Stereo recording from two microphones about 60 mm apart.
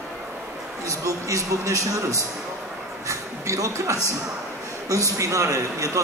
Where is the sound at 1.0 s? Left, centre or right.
Right.